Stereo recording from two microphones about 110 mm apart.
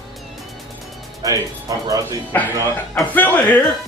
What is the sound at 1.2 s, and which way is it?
Speech, 30° right (ahead or behind).